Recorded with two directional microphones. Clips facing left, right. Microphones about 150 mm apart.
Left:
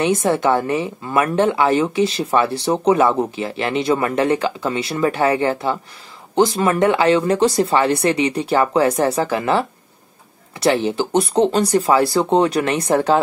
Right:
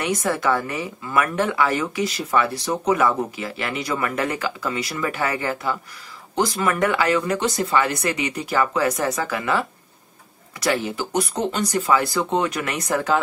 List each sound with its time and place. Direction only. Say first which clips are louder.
0.0 s speech: left 6 dB; 25° left (ahead or behind)